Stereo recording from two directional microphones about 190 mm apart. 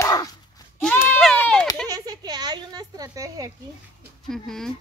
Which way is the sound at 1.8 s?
20° right (ahead or behind).